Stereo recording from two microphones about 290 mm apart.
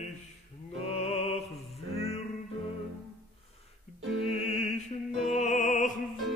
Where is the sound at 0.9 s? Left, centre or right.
Left.